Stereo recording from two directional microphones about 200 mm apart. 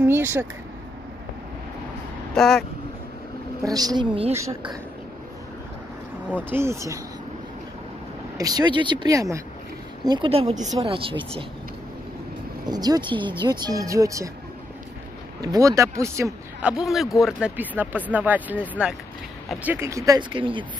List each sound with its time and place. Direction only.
0.0 s speech: 10° right (ahead or behind)
2.3 s speech: centre (ahead or behind)
3.6 s speech: 20° right (ahead or behind)
4.4 s speech: 15° right (ahead or behind)
6.5 s speech: 15° right (ahead or behind)
8.4 s speech: 20° right (ahead or behind)
12.6 s speech: 20° right (ahead or behind)
15.4 s speech: 15° right (ahead or behind)
16.7 s speech: centre (ahead or behind); by 20.6 s 25° right (ahead or behind)